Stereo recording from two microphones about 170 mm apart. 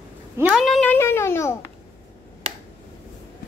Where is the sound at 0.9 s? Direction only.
15° left (ahead or behind).